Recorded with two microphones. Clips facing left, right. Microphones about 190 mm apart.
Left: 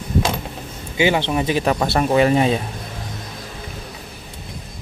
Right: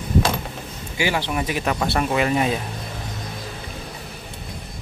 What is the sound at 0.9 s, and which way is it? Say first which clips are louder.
Speech: left 5 dB; 20° left (ahead or behind).